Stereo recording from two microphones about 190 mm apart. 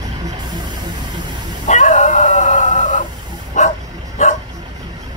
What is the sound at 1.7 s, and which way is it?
Howl, 40° left (ahead or behind).